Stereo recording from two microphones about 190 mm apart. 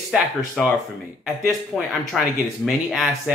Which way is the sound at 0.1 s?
5° right (ahead or behind).